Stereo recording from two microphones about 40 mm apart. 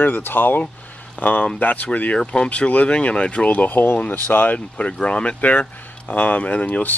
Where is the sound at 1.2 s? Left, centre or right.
Left.